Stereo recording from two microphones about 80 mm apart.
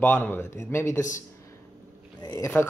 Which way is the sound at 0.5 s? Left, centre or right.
Left.